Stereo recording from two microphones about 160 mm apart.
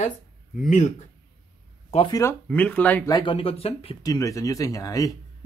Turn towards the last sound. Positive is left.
turn(degrees=20)  # may be behind; listen again after turning